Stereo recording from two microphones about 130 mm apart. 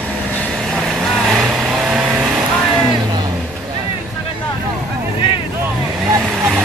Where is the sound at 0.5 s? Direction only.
Centre (ahead or behind).